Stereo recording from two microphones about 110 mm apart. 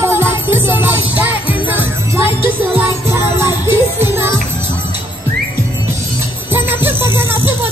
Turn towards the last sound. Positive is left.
turn(degrees=-20)  # may be behind; listen again after turning